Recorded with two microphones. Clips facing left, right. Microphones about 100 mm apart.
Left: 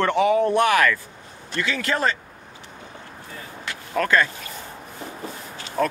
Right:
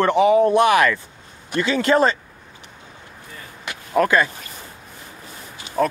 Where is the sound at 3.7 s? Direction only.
15° right (ahead or behind).